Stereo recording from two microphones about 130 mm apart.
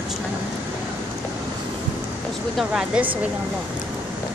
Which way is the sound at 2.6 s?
5° right (ahead or behind).